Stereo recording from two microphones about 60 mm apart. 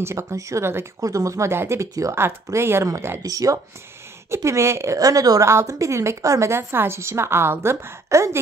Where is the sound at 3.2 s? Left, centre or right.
Right.